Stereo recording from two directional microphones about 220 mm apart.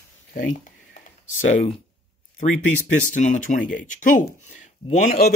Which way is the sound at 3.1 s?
35° left (ahead or behind).